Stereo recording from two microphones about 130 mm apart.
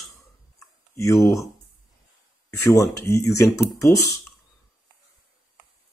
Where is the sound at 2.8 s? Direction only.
25° left (ahead or behind).